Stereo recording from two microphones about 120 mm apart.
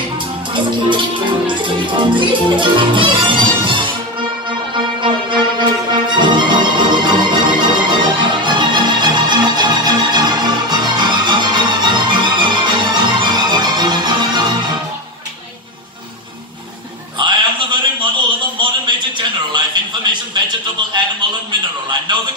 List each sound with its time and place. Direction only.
0.5 s music: 40° right (ahead or behind)
17.2 s a sound: 40° right (ahead or behind)
22.1 s radio: 40° right (ahead or behind)